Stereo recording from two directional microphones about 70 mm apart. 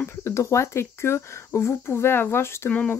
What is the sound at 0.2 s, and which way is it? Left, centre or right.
Speech, left.